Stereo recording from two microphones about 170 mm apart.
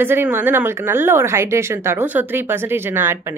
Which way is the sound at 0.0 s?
15° right (ahead or behind).